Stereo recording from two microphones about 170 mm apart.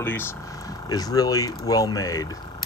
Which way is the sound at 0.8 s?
20° left (ahead or behind).